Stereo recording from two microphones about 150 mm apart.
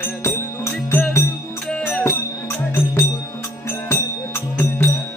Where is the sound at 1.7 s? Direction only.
5° left (ahead or behind).